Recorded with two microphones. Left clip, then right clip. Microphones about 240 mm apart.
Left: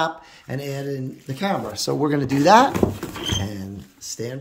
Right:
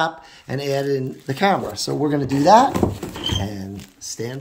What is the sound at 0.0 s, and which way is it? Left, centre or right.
Speech, centre.